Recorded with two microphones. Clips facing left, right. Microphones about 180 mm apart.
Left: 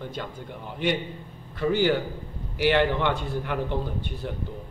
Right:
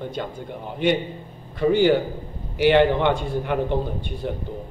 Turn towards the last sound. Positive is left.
turn(degrees=-25)  # may be behind; listen again after turning